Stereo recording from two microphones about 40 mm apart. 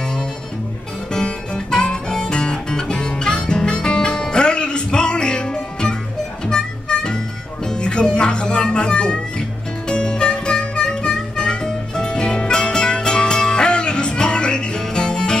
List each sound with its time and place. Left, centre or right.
1.1 s music: centre